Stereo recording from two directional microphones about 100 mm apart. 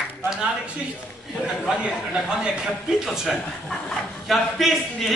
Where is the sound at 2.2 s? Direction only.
10° right (ahead or behind).